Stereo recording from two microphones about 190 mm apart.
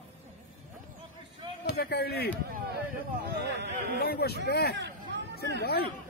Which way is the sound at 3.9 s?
55° left (ahead or behind).